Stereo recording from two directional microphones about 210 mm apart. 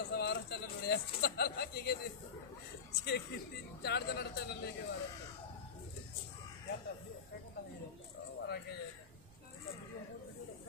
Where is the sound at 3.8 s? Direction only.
50° left (ahead or behind).